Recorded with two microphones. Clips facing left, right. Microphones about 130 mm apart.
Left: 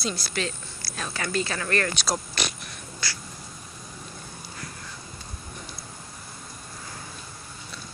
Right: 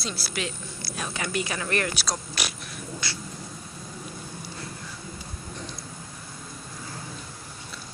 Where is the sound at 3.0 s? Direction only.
20° right (ahead or behind).